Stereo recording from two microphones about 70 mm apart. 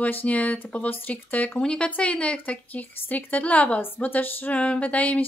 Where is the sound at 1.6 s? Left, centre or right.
Centre.